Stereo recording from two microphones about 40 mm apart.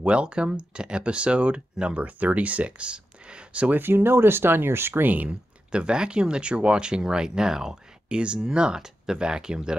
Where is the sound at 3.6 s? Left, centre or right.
Right.